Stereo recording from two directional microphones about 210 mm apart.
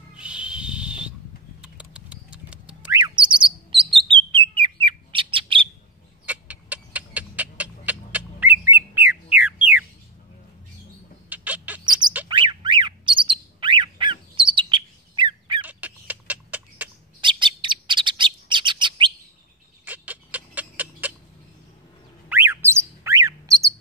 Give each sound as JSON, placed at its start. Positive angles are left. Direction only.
{"t": 0.1, "sound": "owl", "side_deg": -5}
{"t": 1.6, "sound": "a sound", "side_deg": -5}
{"t": 3.0, "sound": "chirp", "side_deg": -25}
{"t": 6.2, "sound": "cat", "side_deg": -5}
{"t": 11.2, "sound": "a sound", "side_deg": -5}
{"t": 12.3, "sound": "bird", "side_deg": -20}
{"t": 15.6, "sound": "fowl", "side_deg": -5}
{"t": 17.2, "sound": "bird", "side_deg": -25}
{"t": 19.8, "sound": "a sound", "side_deg": -10}
{"t": 22.3, "sound": "bird", "side_deg": -10}